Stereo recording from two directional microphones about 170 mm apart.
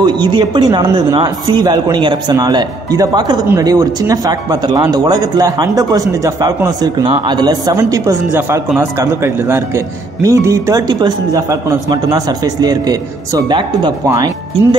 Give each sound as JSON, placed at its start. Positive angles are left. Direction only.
{"t": 0.0, "sound": "speech", "side_deg": -25}